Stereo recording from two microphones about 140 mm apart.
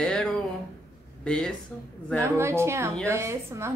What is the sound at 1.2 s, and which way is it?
Speech, 5° left (ahead or behind).